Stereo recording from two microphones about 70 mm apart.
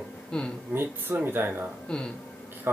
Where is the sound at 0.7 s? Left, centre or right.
Right.